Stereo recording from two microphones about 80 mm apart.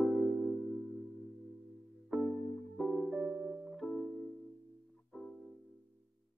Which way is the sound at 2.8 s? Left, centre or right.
Centre.